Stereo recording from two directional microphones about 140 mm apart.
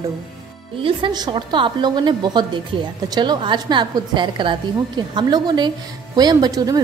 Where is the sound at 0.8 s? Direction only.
35° right (ahead or behind).